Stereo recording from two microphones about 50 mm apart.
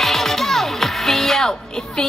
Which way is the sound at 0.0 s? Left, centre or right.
Centre.